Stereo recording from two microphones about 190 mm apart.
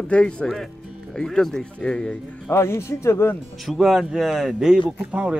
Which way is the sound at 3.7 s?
Centre (ahead or behind).